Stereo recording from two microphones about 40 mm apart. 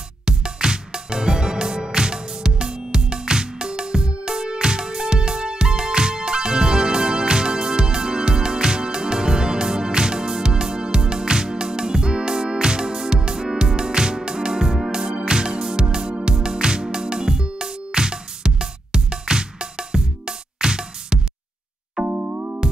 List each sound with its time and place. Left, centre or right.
0.2 s music: centre
22.0 s music: right